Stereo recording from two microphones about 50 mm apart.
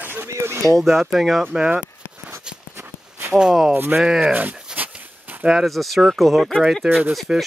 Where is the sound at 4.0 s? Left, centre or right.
Centre.